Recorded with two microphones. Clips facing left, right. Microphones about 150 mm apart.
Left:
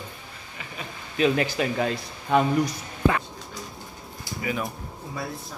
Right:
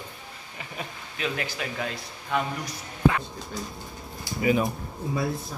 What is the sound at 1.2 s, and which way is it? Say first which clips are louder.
Speech: left 9 dB; 25° left (ahead or behind).